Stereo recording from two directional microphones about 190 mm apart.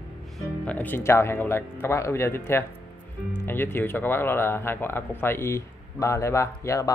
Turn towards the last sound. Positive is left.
turn(degrees=15)  # may be behind; listen again after turning